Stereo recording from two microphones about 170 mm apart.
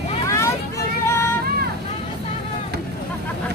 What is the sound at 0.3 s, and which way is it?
Vehicle, 15° left (ahead or behind).